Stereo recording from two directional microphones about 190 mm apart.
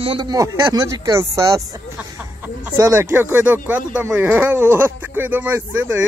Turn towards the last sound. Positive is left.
turn(degrees=-10)  # may be behind; listen again after turning